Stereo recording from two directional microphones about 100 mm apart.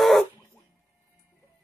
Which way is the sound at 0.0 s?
Centre (ahead or behind).